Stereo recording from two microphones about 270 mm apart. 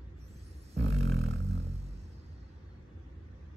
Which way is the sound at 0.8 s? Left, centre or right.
Right.